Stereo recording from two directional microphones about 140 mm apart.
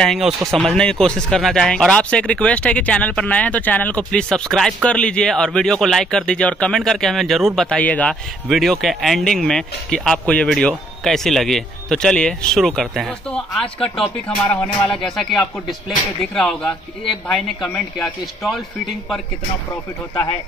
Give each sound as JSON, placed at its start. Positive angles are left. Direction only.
{"t": 0.0, "sound": "speech", "side_deg": 0}
{"t": 19.7, "sound": "speech", "side_deg": 20}